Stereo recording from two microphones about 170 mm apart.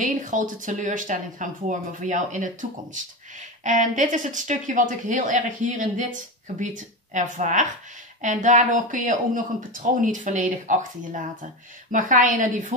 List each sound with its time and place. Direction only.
0.0 s speech: 50° right (ahead or behind)